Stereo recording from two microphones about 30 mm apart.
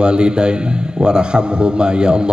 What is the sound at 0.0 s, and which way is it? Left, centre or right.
A man's voice, right.